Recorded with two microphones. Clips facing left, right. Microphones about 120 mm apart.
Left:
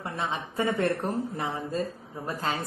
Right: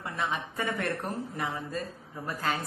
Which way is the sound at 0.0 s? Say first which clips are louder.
Left 1 dB; 25° left (ahead or behind).